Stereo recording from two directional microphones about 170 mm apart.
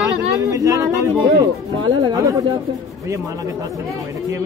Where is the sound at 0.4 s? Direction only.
20° right (ahead or behind).